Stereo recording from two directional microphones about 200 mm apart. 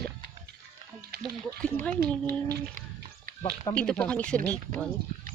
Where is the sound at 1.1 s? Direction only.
55° right (ahead or behind).